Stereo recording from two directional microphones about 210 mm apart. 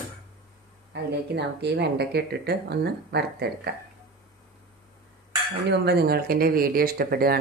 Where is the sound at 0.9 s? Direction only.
55° right (ahead or behind).